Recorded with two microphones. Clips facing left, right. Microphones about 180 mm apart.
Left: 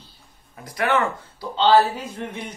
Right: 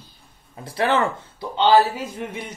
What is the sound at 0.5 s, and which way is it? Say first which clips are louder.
Speech: right 1 dB; 30° right (ahead or behind).